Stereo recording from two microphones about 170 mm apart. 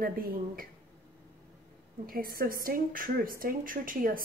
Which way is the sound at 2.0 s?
60° right (ahead or behind).